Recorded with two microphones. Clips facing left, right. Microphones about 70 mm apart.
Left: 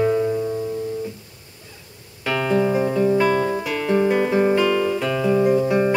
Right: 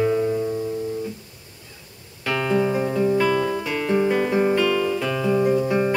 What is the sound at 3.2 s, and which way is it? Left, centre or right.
Music, left.